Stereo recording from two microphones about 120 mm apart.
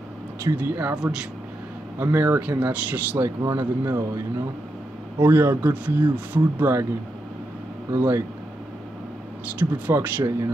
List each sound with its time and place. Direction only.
0.4 s speech: 20° right (ahead or behind)
5.2 s speech: 20° right (ahead or behind)
7.9 s speech: 20° right (ahead or behind)
9.6 s speech: 15° right (ahead or behind)